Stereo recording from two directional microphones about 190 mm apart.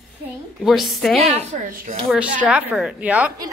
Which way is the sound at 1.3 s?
45° right (ahead or behind).